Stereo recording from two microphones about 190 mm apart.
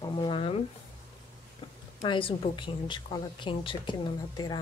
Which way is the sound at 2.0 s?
25° left (ahead or behind).